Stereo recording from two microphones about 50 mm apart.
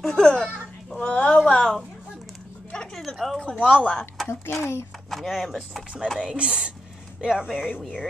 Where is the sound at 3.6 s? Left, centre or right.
Left.